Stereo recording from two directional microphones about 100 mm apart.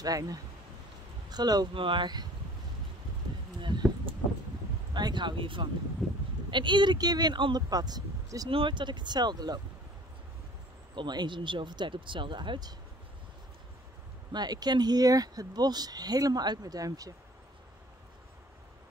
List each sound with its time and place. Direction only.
0.0 s speech: 35° right (ahead or behind)
1.7 s speech: 60° right (ahead or behind)
3.6 s a sound: 50° right (ahead or behind)
4.9 s speech: 50° right (ahead or behind)
6.0 s bleat: 5° left (ahead or behind)
6.5 s speech: 50° right (ahead or behind)
8.5 s speech: 60° right (ahead or behind)
11.0 s speech: 50° right (ahead or behind)
14.3 s speech: 45° right (ahead or behind)